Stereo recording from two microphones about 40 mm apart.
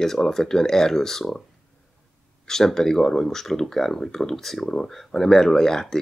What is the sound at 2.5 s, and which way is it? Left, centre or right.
Speech, centre.